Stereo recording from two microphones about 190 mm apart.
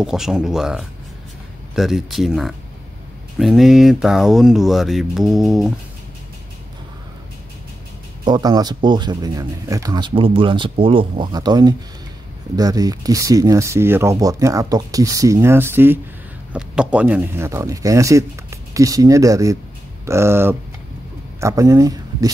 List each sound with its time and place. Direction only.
0.0 s speech: 5° right (ahead or behind)
8.3 s speech: 20° right (ahead or behind)